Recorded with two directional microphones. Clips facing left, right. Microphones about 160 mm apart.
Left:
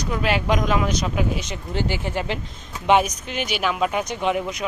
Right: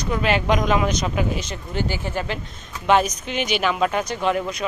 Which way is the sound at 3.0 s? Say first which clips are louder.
Right 2 dB; 5° left (ahead or behind).